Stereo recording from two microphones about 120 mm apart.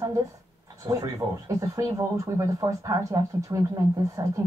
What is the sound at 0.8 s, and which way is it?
Speech, 35° right (ahead or behind).